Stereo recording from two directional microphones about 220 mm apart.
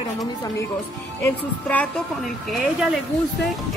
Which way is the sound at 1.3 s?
5° left (ahead or behind).